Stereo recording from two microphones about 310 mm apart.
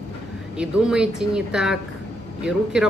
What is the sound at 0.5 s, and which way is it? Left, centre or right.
A man's voice, centre.